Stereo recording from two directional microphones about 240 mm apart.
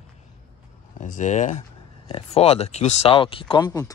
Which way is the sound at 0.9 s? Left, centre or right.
Left.